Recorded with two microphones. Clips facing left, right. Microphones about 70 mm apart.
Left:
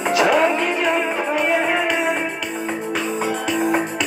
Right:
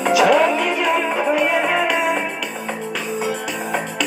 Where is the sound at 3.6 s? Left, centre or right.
Left.